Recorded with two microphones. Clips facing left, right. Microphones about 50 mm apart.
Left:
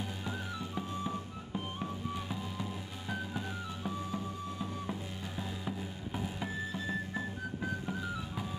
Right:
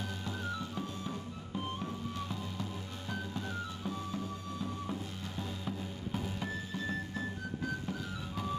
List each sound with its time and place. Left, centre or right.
0.0 s music: centre
2.1 s music: centre
5.4 s music: centre